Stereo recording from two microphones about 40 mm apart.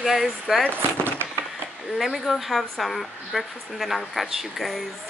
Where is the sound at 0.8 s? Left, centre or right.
Right.